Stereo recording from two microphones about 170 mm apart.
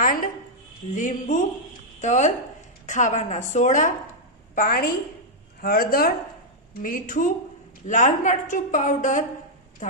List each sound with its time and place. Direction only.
0.0 s a sound: 55° left (ahead or behind)
0.9 s a woman's voice: 50° left (ahead or behind)
4.6 s a woman's voice: 60° left (ahead or behind)